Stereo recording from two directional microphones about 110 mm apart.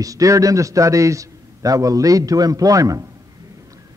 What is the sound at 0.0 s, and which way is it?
A man's voice, 30° right (ahead or behind).